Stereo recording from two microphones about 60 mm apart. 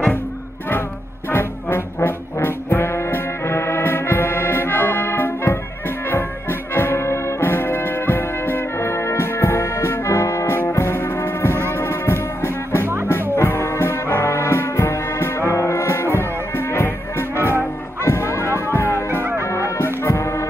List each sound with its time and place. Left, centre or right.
1.3 s brass instrument: left
13.4 s music: left